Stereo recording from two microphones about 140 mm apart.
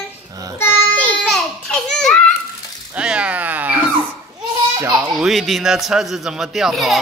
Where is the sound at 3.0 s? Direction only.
10° right (ahead or behind).